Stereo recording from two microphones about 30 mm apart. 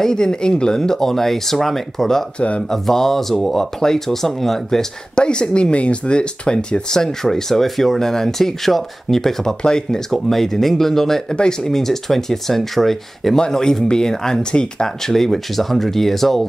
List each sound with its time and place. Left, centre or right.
0.0 s speech: left
0.7 s speech: centre
5.1 s speech: left
6.9 s speech: centre
8.0 s speech: centre
9.6 s speech: left
10.3 s speech: centre
13.5 s speech: centre
15.0 s speech: centre